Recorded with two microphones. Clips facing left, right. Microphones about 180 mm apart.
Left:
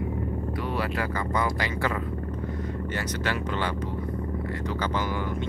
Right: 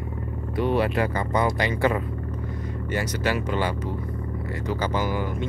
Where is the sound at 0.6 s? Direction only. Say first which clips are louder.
Right 9 dB; 20° right (ahead or behind).